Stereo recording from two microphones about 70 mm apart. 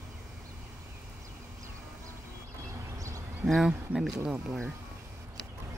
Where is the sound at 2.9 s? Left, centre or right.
Right.